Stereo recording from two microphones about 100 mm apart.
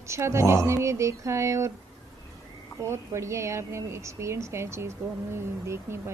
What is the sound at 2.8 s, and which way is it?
A woman's voice, 30° right (ahead or behind).